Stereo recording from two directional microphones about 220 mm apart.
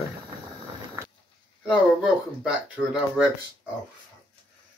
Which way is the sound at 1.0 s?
10° right (ahead or behind).